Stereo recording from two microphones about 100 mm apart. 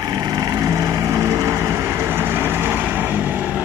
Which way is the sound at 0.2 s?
35° right (ahead or behind).